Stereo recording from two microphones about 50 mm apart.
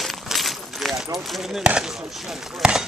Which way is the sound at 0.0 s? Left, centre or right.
Centre.